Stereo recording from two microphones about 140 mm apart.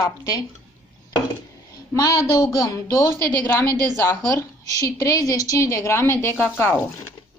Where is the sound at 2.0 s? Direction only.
25° left (ahead or behind).